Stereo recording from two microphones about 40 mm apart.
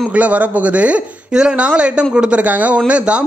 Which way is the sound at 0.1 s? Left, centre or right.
Right.